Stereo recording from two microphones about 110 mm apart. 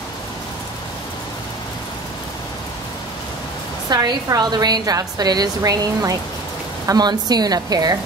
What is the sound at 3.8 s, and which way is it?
A woman's voice, 35° right (ahead or behind).